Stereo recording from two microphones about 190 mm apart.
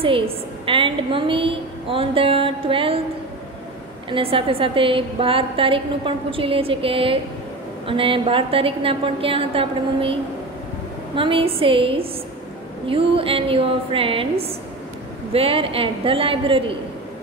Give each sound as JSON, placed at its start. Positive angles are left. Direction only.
{"t": 0.7, "sound": "a woman's voice", "side_deg": -25}
{"t": 4.1, "sound": "a woman's voice", "side_deg": -30}
{"t": 11.1, "sound": "a woman's voice", "side_deg": -30}